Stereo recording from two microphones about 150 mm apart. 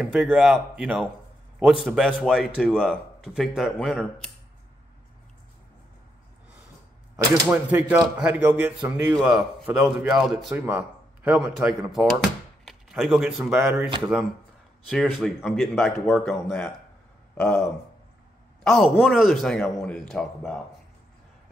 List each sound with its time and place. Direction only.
0.0 s a man's voice: 5° right (ahead or behind)
7.4 s a man's voice: 15° right (ahead or behind)
10.5 s a man's voice: 10° right (ahead or behind)
14.9 s a man's voice: centre (ahead or behind)